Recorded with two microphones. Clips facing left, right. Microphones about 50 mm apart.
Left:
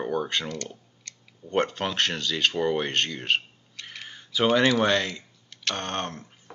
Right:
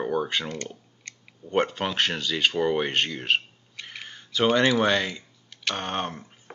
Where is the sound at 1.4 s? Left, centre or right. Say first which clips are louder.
Right 1 dB; centre.